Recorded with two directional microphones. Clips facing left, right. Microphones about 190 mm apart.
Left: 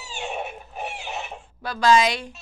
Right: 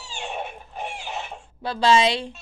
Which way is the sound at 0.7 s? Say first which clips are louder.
Even; 5° left (ahead or behind).